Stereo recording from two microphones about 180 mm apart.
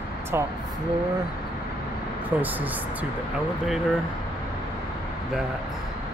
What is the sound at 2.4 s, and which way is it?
Speech, 10° right (ahead or behind).